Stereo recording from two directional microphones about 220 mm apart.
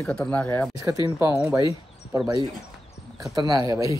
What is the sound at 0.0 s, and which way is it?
Speech, 5° left (ahead or behind).